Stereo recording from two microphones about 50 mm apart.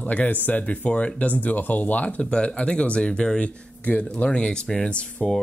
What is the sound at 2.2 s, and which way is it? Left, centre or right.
Speech, left.